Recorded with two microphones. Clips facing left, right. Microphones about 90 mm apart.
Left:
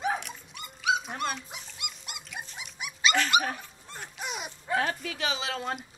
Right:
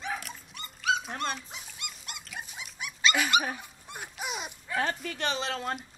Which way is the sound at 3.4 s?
10° right (ahead or behind).